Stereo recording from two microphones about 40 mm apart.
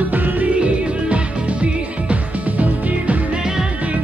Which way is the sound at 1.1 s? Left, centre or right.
Right.